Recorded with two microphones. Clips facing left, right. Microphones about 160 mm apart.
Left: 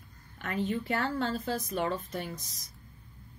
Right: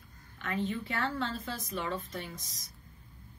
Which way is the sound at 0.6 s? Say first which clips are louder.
Left 3 dB; 45° left (ahead or behind).